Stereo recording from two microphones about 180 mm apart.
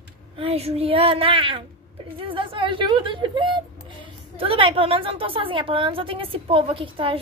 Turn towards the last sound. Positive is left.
turn(degrees=-30)  # may be behind; listen again after turning